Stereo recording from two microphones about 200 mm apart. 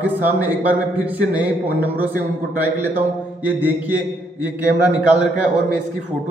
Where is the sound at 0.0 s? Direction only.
10° right (ahead or behind).